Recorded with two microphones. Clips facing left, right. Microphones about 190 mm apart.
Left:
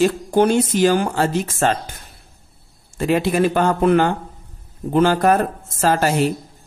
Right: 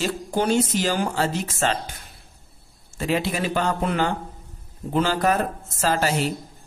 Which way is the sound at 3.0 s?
55° left (ahead or behind).